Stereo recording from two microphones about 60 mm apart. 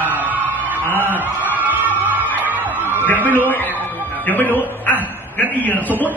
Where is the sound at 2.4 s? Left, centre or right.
Right.